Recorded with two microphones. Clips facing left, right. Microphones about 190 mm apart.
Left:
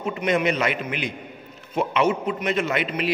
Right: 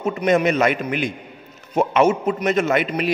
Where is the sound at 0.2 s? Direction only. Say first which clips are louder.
Right 5 dB; 45° right (ahead or behind).